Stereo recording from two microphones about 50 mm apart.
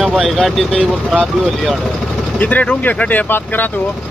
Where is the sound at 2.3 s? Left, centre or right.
Left.